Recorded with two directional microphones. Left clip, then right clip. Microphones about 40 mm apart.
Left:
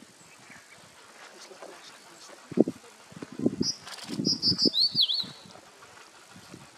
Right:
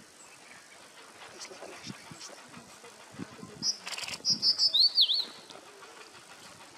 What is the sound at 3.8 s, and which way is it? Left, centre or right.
Bird flight, right.